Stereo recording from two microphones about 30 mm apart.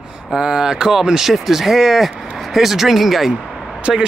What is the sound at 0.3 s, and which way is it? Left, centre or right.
Speech, centre.